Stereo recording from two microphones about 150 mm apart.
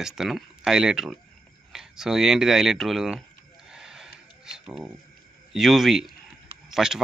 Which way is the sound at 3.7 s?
5° right (ahead or behind).